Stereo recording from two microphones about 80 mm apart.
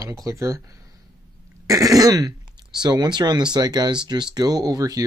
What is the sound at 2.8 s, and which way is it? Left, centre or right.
Speech, right.